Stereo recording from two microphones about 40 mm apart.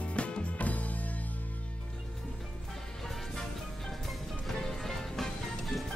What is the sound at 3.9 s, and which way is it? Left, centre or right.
Music, centre.